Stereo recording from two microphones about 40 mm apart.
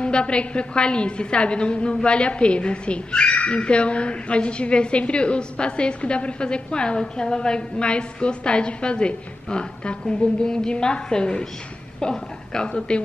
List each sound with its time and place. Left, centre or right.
0.0 s a woman's voice: left